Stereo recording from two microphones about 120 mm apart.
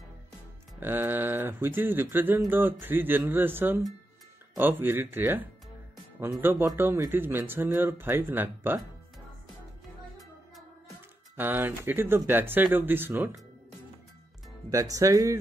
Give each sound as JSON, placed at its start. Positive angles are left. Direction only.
{"t": 0.7, "sound": "speech", "side_deg": -15}
{"t": 11.3, "sound": "speech", "side_deg": -15}
{"t": 14.7, "sound": "speech", "side_deg": -25}